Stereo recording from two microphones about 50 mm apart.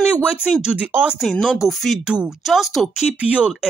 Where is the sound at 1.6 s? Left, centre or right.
Centre.